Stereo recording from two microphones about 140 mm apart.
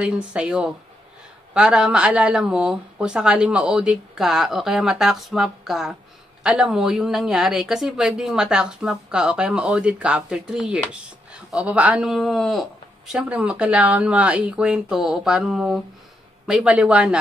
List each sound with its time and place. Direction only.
0.0 s a woman's voice: 10° right (ahead or behind)